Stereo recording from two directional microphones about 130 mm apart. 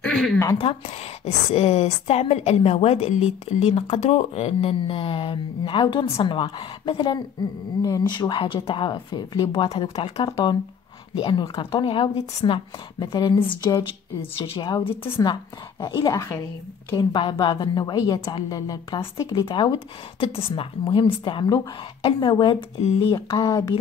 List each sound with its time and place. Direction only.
0.0 s speech: 5° left (ahead or behind)
0.6 s speech: 50° left (ahead or behind)
9.7 s speech: 50° left (ahead or behind)
10.2 s a woman's voice: 35° left (ahead or behind)
16.9 s speech: 40° left (ahead or behind)